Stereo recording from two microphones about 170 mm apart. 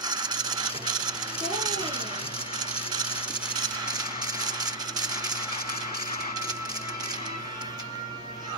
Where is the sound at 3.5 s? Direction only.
25° right (ahead or behind).